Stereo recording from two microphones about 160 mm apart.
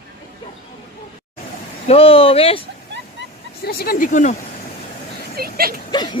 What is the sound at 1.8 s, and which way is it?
Speech, 35° left (ahead or behind).